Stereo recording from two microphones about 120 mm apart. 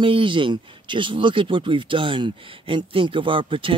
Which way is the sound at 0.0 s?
45° right (ahead or behind).